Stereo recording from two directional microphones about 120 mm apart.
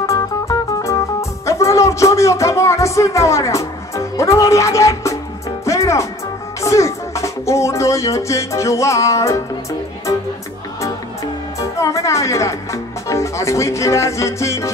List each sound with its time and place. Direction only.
0.0 s music: 25° left (ahead or behind)
11.6 s speech: 25° left (ahead or behind)